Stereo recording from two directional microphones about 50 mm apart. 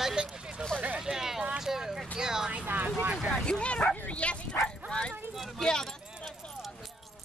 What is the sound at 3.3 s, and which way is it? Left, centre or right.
Speech, left.